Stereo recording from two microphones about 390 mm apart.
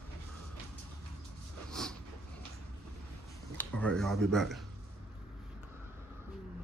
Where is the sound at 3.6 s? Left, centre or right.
Centre.